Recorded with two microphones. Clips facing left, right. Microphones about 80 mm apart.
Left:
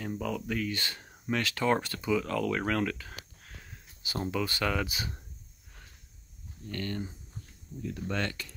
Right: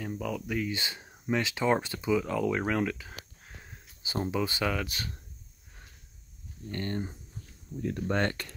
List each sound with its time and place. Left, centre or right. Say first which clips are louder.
0.0 s speech: even; centre
3.6 s a sound: even; right
4.2 s speech: right 1 dB; centre
4.6 s speech: even; centre
6.7 s speech: right 2 dB; right
8.1 s speech: right 5 dB; right